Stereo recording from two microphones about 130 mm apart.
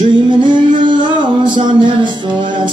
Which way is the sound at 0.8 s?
35° right (ahead or behind).